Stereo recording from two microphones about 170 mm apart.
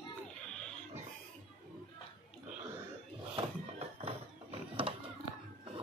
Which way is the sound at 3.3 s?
35° right (ahead or behind).